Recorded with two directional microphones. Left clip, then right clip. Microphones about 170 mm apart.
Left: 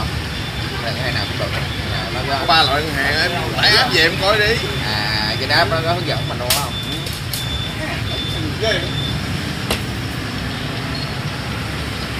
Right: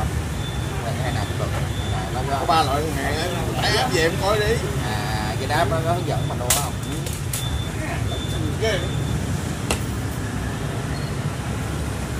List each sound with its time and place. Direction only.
2.4 s speech: 5° right (ahead or behind)
5.5 s speech: 15° left (ahead or behind)